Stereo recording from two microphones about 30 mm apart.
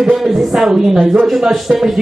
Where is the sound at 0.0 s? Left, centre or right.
Centre.